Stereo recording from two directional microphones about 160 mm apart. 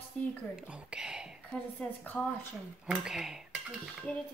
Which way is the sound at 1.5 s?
10° left (ahead or behind).